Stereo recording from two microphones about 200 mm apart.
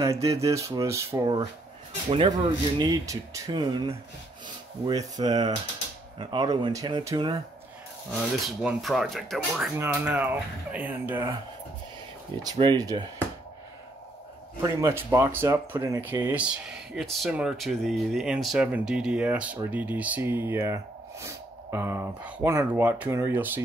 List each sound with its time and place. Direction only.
0.0 s speech: 15° right (ahead or behind)
8.6 s speech: 5° right (ahead or behind)
12.4 s speech: 20° right (ahead or behind)
14.6 s speech: 15° right (ahead or behind)